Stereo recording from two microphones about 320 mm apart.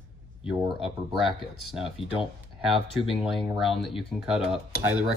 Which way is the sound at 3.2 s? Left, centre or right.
Centre.